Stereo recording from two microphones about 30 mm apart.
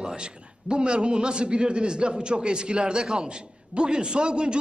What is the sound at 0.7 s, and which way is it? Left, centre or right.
A man's voice, right.